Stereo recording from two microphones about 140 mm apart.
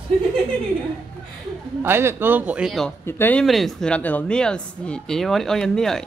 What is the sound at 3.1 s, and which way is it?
Speech, 15° left (ahead or behind).